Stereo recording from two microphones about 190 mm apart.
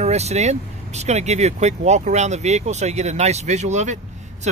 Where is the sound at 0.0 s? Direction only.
35° right (ahead or behind).